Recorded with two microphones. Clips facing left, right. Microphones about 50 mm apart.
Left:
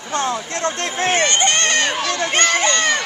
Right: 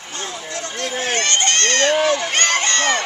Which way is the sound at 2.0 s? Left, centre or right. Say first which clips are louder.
Right 3 dB; centre.